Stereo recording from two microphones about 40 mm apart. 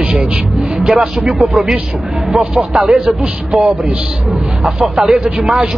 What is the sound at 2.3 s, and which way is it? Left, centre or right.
Speech, centre.